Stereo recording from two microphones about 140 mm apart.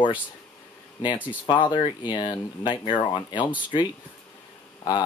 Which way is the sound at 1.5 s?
35° left (ahead or behind).